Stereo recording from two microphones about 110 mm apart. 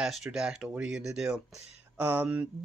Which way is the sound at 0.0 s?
5° right (ahead or behind).